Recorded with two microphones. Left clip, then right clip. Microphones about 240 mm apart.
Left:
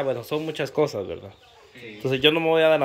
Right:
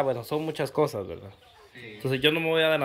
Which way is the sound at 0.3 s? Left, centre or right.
Centre.